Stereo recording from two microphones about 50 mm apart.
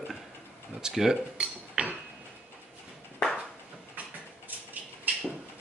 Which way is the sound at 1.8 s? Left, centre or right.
Right.